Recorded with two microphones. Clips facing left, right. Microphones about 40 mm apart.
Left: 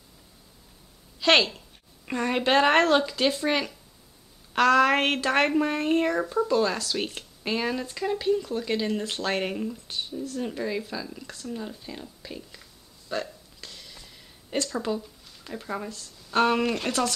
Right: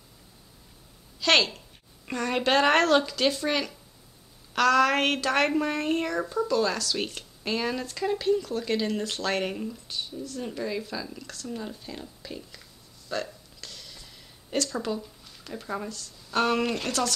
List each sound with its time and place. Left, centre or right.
1.2 s a woman's voice: centre
6.0 s a woman's voice: left; by 12.6 s centre
13.1 s hiccup: centre
14.6 s speech: centre